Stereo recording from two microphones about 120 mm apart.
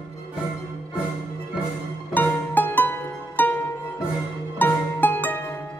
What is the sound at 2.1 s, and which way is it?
Music, 15° left (ahead or behind).